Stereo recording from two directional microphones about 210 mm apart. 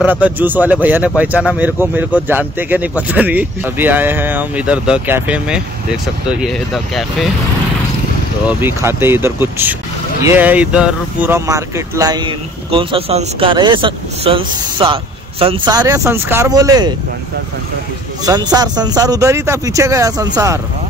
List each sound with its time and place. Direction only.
0.0 s speech: 5° right (ahead or behind)
8.5 s speech: 10° right (ahead or behind)
18.2 s speech: 20° right (ahead or behind)